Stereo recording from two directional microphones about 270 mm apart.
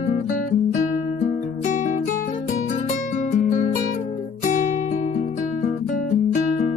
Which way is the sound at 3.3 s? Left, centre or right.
Left.